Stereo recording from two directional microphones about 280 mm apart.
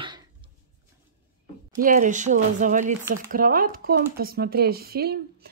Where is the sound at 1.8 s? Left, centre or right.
Right.